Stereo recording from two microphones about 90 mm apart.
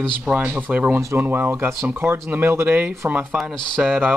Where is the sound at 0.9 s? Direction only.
25° right (ahead or behind).